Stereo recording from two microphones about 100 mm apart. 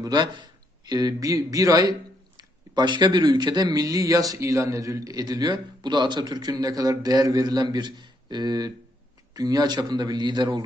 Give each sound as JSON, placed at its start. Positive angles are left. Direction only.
{"t": 0.0, "sound": "a man's voice", "side_deg": -45}